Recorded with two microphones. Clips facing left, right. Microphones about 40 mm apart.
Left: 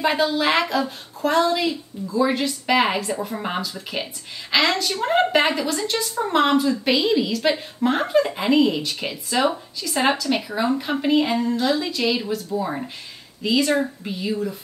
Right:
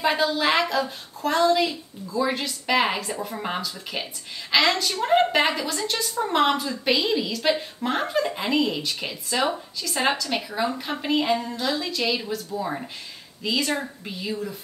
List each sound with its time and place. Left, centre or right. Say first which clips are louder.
0.0 s a woman's voice: left 2 dB; centre